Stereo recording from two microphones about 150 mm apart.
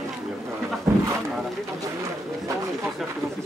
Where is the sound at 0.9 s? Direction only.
15° right (ahead or behind).